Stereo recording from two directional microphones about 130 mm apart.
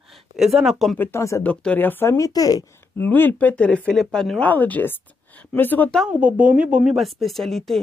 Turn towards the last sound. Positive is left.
turn(degrees=0)  # may be behind; listen again after turning